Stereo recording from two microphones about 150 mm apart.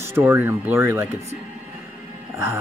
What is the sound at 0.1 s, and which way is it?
Speech, 15° right (ahead or behind).